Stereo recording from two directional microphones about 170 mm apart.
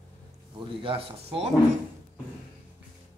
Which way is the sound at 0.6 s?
30° right (ahead or behind).